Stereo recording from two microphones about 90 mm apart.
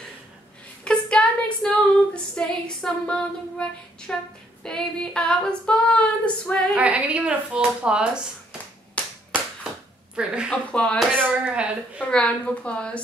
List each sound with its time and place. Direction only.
0.8 s a sound: 10° left (ahead or behind)
2.3 s female singing: 10° left (ahead or behind)
6.7 s speech: 15° right (ahead or behind)
9.0 s a sound: 15° left (ahead or behind)
10.1 s speech: 10° right (ahead or behind)
10.7 s female singing: 10° left (ahead or behind)
11.1 s speech: 10° right (ahead or behind)
12.0 s female singing: 10° left (ahead or behind)